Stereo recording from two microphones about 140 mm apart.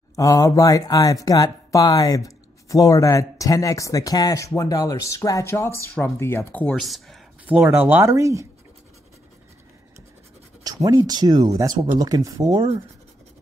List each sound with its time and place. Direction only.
0.1 s speech: 25° left (ahead or behind)
6.8 s speech: centre (ahead or behind)
7.4 s speech: 10° right (ahead or behind)
10.6 s speech: 25° right (ahead or behind)